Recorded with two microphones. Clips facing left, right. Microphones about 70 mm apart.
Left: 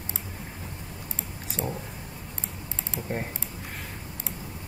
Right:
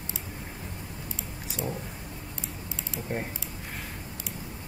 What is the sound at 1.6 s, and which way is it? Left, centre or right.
Speech, centre.